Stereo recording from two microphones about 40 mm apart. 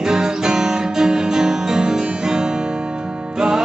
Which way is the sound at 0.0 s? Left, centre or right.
Centre.